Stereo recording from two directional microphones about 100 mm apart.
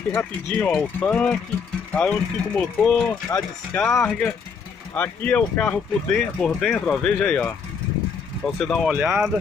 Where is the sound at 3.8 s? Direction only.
10° left (ahead or behind).